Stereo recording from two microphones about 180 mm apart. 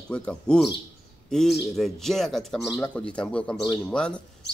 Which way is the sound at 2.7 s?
20° left (ahead or behind).